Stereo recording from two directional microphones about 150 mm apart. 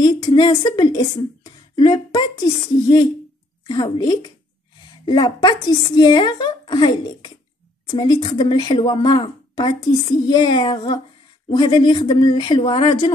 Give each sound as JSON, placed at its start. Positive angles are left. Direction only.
{"t": 0.0, "sound": "a woman's voice", "side_deg": 30}